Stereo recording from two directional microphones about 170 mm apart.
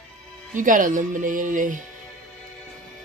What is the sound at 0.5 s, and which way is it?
Speech, 50° right (ahead or behind).